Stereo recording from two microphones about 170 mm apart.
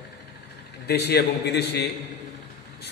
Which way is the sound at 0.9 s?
75° left (ahead or behind).